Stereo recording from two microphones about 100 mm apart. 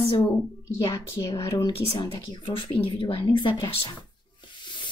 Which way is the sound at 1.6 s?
50° left (ahead or behind).